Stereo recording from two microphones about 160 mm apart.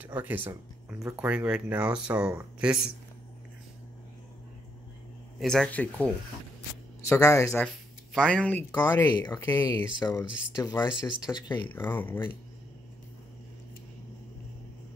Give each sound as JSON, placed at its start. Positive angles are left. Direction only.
{"t": 0.0, "sound": "speech", "side_deg": -10}
{"t": 5.4, "sound": "speech", "side_deg": 5}
{"t": 7.6, "sound": "speech", "side_deg": 5}
{"t": 8.8, "sound": "speech", "side_deg": 25}
{"t": 11.7, "sound": "speech", "side_deg": 10}